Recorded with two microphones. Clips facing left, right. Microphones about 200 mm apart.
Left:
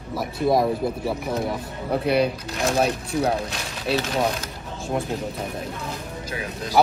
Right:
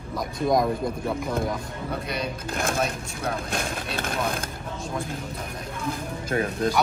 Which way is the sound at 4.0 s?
55° right (ahead or behind).